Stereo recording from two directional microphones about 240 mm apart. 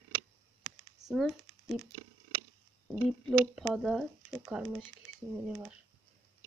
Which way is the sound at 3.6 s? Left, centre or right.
Centre.